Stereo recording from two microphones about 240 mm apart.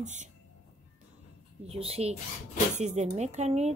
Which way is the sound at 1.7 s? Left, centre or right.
Right.